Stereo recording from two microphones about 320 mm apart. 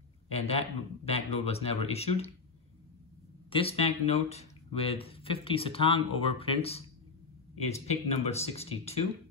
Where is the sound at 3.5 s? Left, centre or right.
Centre.